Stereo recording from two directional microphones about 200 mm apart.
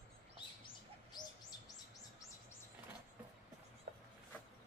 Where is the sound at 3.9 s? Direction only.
50° right (ahead or behind).